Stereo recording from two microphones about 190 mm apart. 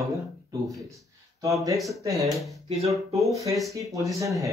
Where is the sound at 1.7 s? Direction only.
Centre (ahead or behind).